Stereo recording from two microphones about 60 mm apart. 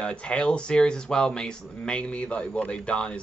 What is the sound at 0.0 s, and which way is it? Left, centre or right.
Speech, centre.